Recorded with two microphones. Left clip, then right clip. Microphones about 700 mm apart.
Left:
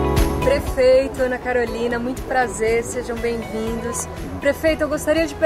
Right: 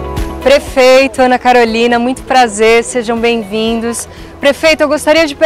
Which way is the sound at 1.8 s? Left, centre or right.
Right.